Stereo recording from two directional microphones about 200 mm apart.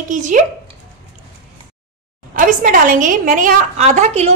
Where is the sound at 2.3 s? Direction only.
40° right (ahead or behind).